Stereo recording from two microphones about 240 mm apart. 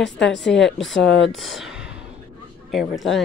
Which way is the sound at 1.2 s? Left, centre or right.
Centre.